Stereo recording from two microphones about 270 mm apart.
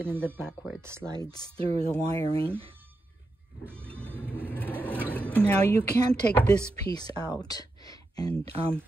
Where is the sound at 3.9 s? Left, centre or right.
Centre.